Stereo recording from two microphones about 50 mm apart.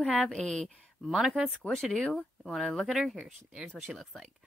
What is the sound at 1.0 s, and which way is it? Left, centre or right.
Speech, centre.